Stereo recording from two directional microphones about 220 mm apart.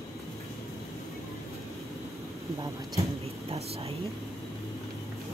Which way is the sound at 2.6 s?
15° right (ahead or behind).